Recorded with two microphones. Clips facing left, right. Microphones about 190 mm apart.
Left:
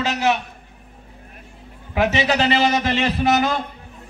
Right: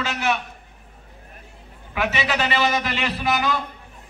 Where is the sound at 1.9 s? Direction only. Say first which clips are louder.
Left 5 dB; 35° left (ahead or behind).